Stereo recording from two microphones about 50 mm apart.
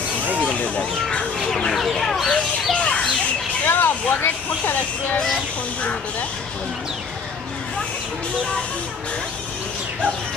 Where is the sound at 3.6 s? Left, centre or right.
Left.